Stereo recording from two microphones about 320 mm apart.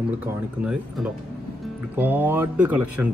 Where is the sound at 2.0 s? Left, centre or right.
Centre.